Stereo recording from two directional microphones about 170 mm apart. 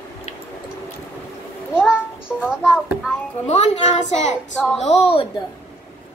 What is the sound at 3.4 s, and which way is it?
A woman's voice, 40° left (ahead or behind).